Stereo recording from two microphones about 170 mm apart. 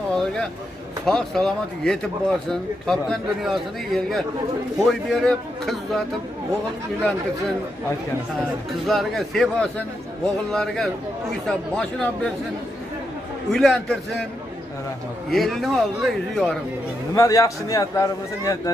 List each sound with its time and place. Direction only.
0.1 s a sound: 5° left (ahead or behind)
1.0 s speech: 5° left (ahead or behind)
8.8 s speech: centre (ahead or behind)
13.5 s speech: centre (ahead or behind)
15.2 s speech: centre (ahead or behind)
17.1 s a man's voice: 20° left (ahead or behind)